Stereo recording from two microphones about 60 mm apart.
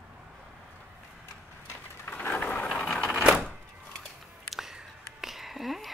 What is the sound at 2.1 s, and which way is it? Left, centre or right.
Vehicle, left.